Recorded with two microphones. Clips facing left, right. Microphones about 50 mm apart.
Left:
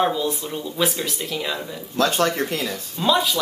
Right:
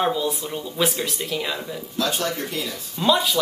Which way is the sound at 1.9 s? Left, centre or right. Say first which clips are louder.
Left 5 dB; left.